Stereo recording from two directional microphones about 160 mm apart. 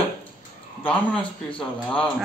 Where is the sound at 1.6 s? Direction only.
5° left (ahead or behind).